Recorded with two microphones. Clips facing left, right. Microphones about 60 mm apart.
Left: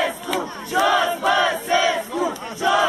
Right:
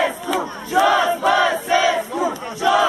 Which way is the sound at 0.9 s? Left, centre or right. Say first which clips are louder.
Right 2 dB; centre.